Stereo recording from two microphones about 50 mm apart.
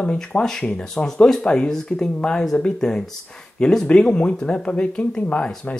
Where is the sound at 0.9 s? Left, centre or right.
Centre; by 5.8 s left.